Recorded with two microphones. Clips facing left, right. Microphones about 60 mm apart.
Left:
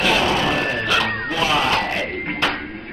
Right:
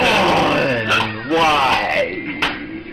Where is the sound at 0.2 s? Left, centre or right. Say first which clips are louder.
Right 5 dB; right.